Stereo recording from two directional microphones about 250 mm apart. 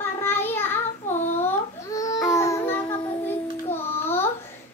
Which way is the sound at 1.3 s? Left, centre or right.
Centre.